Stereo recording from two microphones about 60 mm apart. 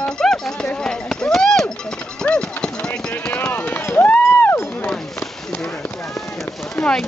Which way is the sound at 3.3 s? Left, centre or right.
Left.